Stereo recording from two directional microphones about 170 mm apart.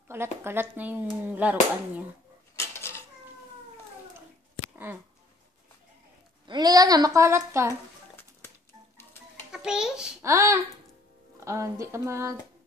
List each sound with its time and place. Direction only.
0.1 s speech: 15° right (ahead or behind)
2.5 s cutlery: 15° left (ahead or behind)
4.7 s a sound: 10° right (ahead or behind)
6.4 s a sound: 25° right (ahead or behind)
9.5 s a child's voice: 5° right (ahead or behind)
10.2 s speech: 15° right (ahead or behind)
11.3 s music: 15° right (ahead or behind)
11.8 s speech: 15° right (ahead or behind)